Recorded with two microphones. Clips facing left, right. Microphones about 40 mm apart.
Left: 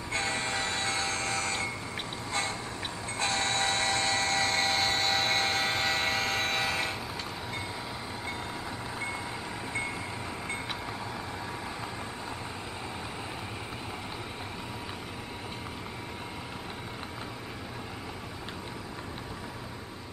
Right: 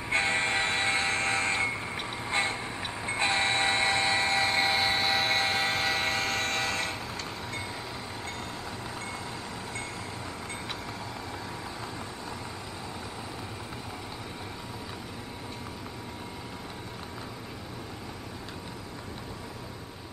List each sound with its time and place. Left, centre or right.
0.1 s train: right
2.2 s a sound: right
3.1 s train: right; by 7.0 s centre